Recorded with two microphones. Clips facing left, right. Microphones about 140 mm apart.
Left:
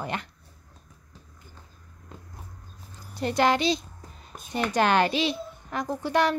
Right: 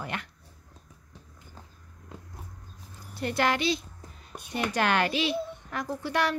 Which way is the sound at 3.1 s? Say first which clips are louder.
Left 4 dB; 20° left (ahead or behind).